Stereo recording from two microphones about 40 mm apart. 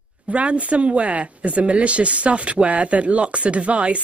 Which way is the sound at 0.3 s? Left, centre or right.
Right.